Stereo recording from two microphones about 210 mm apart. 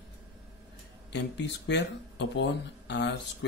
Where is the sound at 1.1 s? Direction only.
55° left (ahead or behind).